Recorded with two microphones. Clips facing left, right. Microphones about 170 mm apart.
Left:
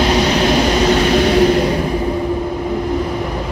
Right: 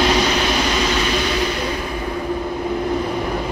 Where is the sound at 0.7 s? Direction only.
40° left (ahead or behind).